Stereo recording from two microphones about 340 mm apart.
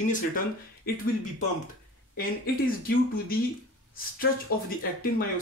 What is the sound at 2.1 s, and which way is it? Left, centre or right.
Speech, left.